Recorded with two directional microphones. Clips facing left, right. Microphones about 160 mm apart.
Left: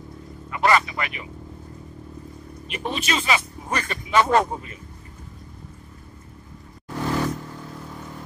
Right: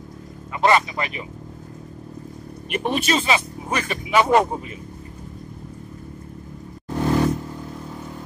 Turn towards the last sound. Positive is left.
turn(degrees=-25)  # may be behind; listen again after turning